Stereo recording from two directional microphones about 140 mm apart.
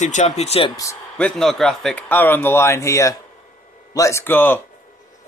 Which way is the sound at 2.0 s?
15° left (ahead or behind).